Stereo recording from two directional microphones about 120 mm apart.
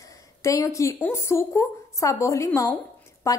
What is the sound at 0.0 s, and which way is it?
A woman's voice, 25° left (ahead or behind).